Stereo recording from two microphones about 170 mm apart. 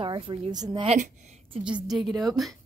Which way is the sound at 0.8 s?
45° right (ahead or behind).